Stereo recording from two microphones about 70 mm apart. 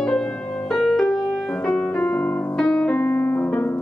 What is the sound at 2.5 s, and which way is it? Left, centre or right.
Piano, centre.